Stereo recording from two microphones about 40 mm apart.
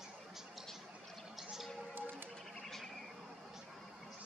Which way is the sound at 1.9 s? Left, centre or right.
Right.